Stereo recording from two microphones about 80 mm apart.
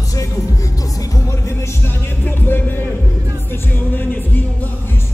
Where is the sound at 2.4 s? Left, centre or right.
Left.